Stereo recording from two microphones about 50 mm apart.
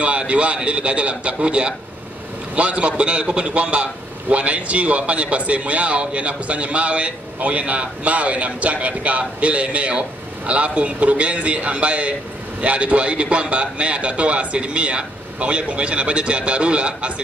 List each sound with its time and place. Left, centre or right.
0.2 s a man's voice: right